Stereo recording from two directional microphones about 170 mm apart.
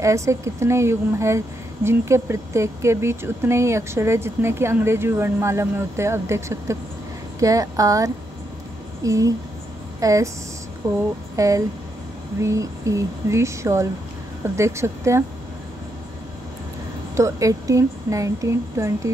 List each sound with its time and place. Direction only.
0.0 s a woman's voice: 15° right (ahead or behind)
17.1 s speech: 20° right (ahead or behind)